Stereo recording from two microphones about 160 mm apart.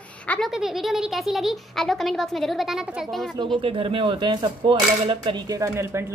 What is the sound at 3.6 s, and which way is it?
Speech, 35° right (ahead or behind).